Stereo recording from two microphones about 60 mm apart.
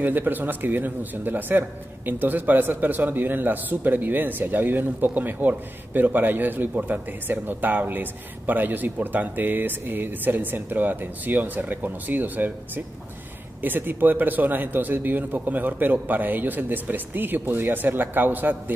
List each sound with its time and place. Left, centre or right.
0.0 s speech: right